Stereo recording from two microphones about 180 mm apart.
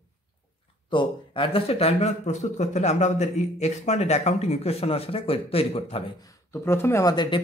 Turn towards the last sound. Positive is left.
turn(degrees=25)  # may be behind; listen again after turning